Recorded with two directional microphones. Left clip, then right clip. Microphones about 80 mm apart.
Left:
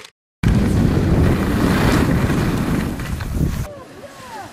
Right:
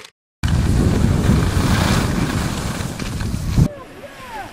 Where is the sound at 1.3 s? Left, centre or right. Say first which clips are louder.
Left 2 dB; centre.